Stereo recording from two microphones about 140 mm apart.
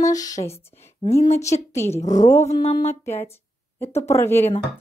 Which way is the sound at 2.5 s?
45° left (ahead or behind).